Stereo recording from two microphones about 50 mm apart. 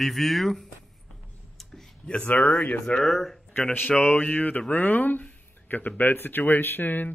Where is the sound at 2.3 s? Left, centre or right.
Left.